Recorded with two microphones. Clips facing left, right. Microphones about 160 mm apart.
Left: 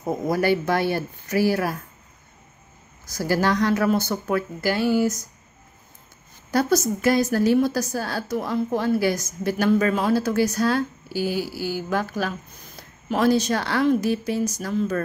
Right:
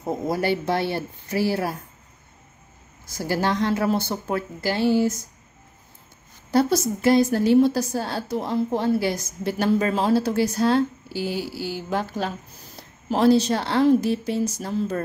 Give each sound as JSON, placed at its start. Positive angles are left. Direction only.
{"t": 0.3, "sound": "a woman's voice", "side_deg": -25}
{"t": 3.1, "sound": "a woman's voice", "side_deg": -25}
{"t": 6.5, "sound": "a woman's voice", "side_deg": -25}